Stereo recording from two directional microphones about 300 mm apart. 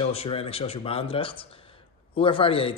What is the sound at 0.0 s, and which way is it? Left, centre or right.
Speech, centre.